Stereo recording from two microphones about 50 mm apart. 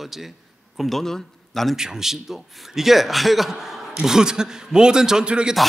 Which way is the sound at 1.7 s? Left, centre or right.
Centre.